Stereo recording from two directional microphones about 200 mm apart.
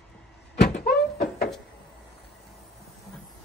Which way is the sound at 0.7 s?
50° left (ahead or behind).